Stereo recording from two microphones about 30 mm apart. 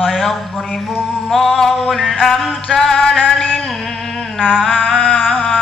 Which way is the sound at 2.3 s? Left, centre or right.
Centre.